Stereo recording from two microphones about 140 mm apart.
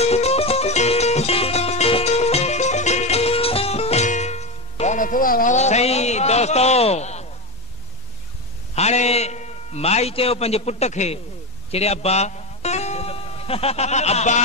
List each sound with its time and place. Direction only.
0.0 s music: 50° left (ahead or behind)
8.7 s a sound: 50° left (ahead or behind)
11.7 s music: 50° left (ahead or behind)